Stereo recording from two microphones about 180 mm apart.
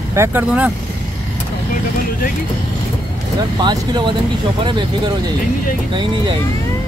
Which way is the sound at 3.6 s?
25° right (ahead or behind).